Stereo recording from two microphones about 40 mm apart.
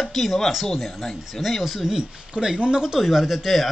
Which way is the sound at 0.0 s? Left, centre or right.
Centre.